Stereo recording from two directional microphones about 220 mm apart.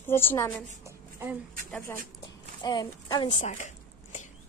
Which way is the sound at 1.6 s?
5° left (ahead or behind).